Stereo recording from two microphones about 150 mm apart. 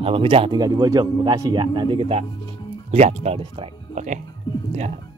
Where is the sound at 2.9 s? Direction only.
50° right (ahead or behind).